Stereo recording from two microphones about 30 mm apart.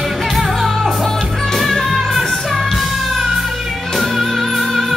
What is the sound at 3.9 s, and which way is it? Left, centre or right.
Music, centre.